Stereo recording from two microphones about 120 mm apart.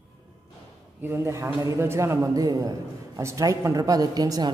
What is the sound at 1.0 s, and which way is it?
A man's voice, 20° right (ahead or behind).